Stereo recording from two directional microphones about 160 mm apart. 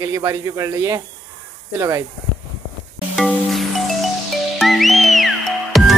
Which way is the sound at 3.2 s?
Centre (ahead or behind).